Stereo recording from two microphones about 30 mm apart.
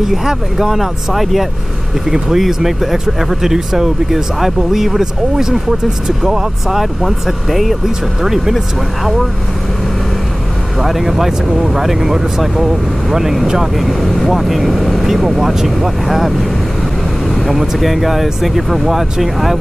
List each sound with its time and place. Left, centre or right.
0.0 s speech: centre
2.0 s speech: centre
8.2 s speech: centre
10.8 s speech: centre